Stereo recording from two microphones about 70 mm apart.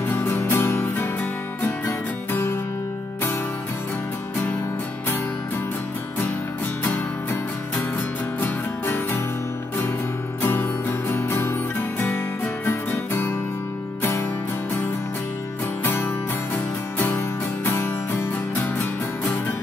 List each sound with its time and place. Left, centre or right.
0.1 s music: left
6.8 s music: left
8.8 s music: left
10.4 s music: left
12.6 s music: left
15.8 s music: left
17.6 s music: left